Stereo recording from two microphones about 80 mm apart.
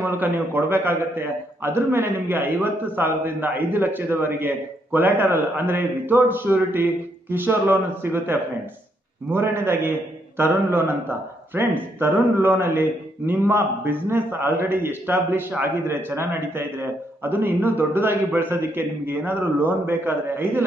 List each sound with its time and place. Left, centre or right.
0.0 s a man's voice: right